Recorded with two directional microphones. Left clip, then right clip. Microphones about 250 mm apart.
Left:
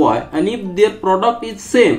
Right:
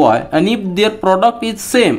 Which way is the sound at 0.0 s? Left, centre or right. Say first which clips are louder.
Right 3 dB; right.